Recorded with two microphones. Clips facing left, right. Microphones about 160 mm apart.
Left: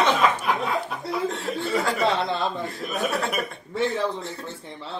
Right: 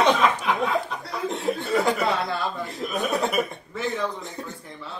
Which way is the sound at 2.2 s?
20° left (ahead or behind).